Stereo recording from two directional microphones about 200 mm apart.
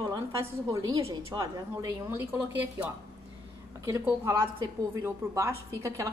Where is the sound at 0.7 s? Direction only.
15° right (ahead or behind).